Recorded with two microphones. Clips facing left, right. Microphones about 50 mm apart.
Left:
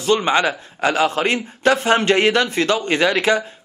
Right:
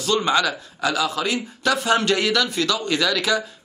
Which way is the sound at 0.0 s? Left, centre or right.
Left.